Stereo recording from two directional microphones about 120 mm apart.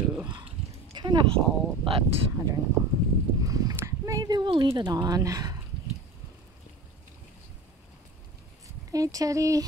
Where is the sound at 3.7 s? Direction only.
25° right (ahead or behind).